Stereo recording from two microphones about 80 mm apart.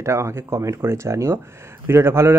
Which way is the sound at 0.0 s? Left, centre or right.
Right.